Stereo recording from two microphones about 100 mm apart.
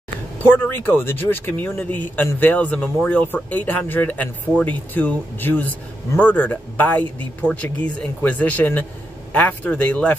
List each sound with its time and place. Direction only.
0.4 s speech: 20° left (ahead or behind)